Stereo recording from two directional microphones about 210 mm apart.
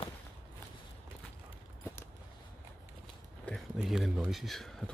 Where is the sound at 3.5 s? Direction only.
Centre (ahead or behind).